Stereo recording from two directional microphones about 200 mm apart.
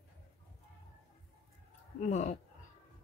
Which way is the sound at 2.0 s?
35° left (ahead or behind).